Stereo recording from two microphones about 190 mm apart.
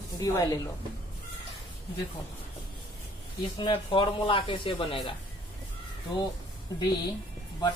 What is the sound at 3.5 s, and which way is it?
Speech, 25° left (ahead or behind).